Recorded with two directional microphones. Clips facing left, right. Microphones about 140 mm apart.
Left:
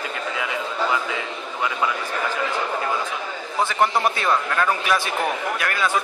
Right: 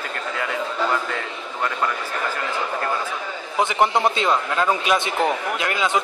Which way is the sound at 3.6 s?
20° right (ahead or behind).